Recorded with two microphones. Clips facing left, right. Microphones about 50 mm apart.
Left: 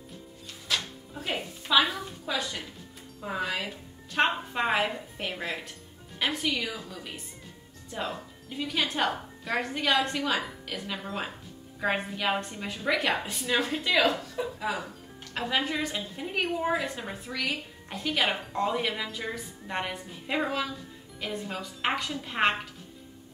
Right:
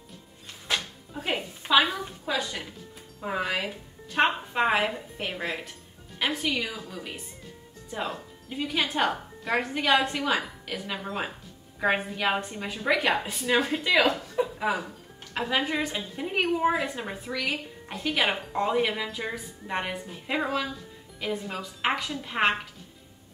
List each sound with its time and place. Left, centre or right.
0.7 s music: right
3.2 s speech: centre
14.0 s a sound: right
15.3 s speech: centre